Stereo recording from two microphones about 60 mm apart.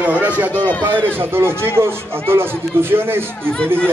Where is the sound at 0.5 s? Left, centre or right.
Left.